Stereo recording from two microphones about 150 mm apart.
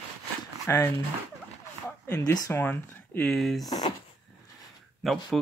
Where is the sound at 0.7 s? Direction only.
20° left (ahead or behind).